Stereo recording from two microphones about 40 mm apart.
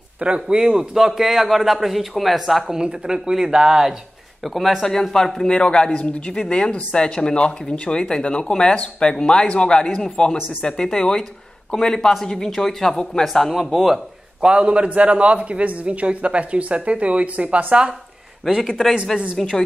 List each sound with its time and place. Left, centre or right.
0.2 s a man's voice: right; by 2.7 s centre
2.7 s speech: right
4.4 s a man's voice: centre
5.1 s speech: centre
5.5 s a man's voice: left; by 14.0 s centre
14.4 s a man's voice: right
18.7 s speech: centre